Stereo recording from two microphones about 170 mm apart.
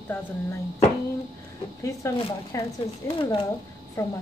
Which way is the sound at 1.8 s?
15° left (ahead or behind).